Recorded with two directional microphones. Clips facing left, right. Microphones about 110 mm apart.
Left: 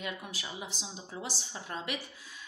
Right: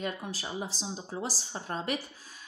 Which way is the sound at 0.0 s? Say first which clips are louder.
Right 4 dB; 35° right (ahead or behind).